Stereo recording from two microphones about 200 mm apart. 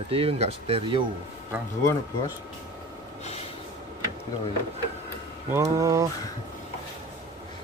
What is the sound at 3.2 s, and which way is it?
Snort, 30° left (ahead or behind).